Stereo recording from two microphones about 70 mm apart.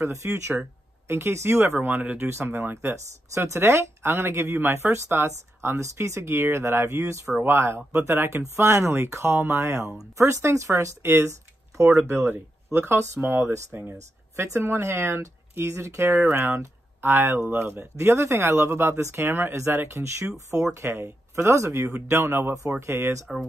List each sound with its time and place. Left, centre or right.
0.0 s speech: right